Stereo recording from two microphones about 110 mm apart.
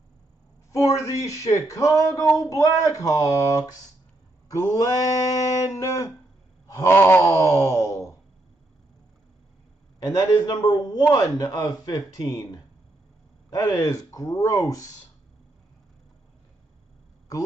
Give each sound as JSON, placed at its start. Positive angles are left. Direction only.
{"t": 0.7, "sound": "speech", "side_deg": 30}
{"t": 6.7, "sound": "a sound", "side_deg": 25}
{"t": 10.0, "sound": "speech", "side_deg": 30}